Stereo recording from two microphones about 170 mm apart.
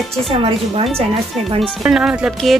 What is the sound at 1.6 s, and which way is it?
Speech, centre (ahead or behind).